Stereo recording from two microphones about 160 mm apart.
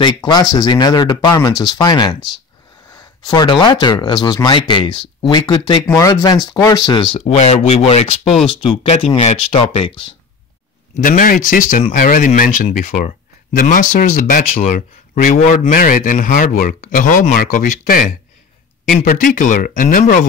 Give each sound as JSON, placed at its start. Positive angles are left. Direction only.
{"t": 0.0, "sound": "speech", "side_deg": 25}
{"t": 7.2, "sound": "speech", "side_deg": 40}
{"t": 11.0, "sound": "speech", "side_deg": 60}
{"t": 15.2, "sound": "speech", "side_deg": 50}